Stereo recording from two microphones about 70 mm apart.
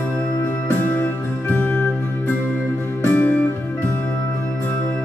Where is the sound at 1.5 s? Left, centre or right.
Left.